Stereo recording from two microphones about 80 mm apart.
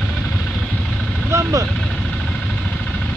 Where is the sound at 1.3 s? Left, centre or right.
Right.